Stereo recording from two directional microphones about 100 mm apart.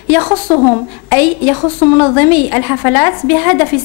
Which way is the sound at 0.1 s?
20° left (ahead or behind).